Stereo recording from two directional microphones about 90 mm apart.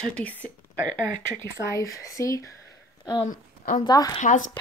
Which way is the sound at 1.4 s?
40° left (ahead or behind).